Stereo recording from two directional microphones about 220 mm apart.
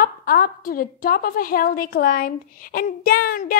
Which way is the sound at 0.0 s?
40° left (ahead or behind).